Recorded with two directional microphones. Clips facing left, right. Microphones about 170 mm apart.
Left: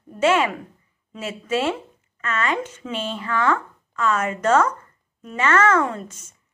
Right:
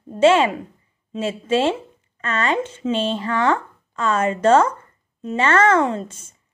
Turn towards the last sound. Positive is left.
turn(degrees=-30)  # may be behind; listen again after turning